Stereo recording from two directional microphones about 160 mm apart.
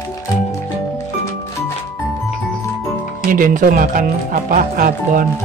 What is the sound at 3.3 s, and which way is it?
Speech, 60° right (ahead or behind).